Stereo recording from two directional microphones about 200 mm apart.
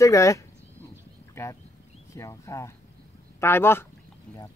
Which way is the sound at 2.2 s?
15° left (ahead or behind).